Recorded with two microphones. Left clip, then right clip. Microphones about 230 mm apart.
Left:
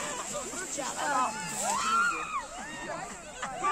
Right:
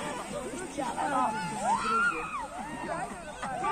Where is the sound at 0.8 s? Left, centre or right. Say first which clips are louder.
Right 1 dB; left.